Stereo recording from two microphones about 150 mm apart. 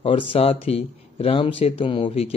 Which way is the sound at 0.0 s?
35° left (ahead or behind).